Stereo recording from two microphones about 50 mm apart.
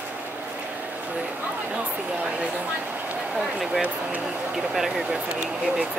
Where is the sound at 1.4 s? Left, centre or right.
Right.